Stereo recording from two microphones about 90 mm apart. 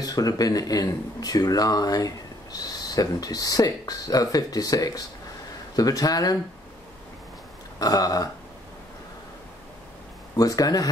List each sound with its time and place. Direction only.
0.0 s speech: 40° left (ahead or behind)
7.8 s speech: 40° left (ahead or behind)
10.3 s speech: 40° left (ahead or behind)